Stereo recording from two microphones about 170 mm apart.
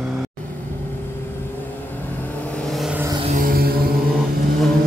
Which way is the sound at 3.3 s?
60° right (ahead or behind).